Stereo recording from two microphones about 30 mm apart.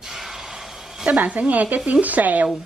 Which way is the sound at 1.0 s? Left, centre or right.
Right.